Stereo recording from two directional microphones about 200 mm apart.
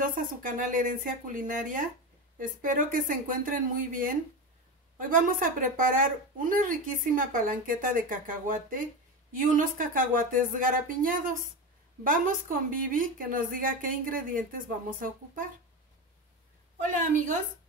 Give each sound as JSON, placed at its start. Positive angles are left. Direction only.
{"t": 0.0, "sound": "a woman's voice", "side_deg": -45}
{"t": 16.8, "sound": "a woman's voice", "side_deg": -40}